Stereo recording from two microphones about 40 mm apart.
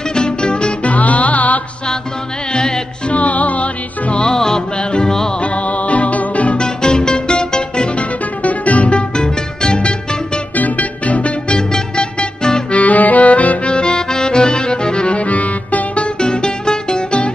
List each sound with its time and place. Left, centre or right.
0.1 s music: left
0.9 s music: left
2.5 s music: centre
3.1 s music: left
4.3 s music: centre
5.4 s music: left
6.6 s music: left
9.1 s music: left
10.5 s music: left
11.5 s music: left
12.7 s music: left
13.7 s accordion: left